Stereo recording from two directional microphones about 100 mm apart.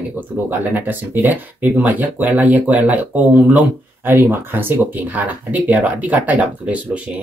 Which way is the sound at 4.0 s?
25° right (ahead or behind).